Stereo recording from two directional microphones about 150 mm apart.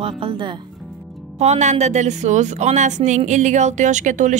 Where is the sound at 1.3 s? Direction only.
50° right (ahead or behind).